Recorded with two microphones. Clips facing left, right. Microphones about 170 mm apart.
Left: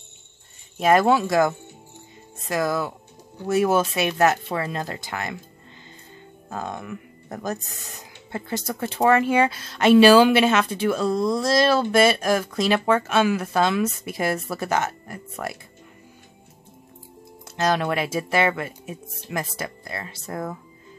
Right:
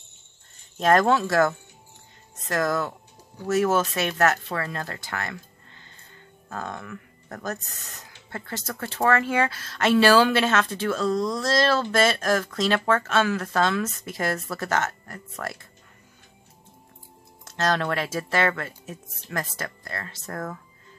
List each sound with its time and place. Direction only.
0.7 s speech: 10° left (ahead or behind)
6.5 s speech: 15° left (ahead or behind)
17.5 s speech: 10° left (ahead or behind)